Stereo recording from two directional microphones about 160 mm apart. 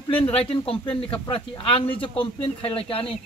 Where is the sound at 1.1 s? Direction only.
35° left (ahead or behind).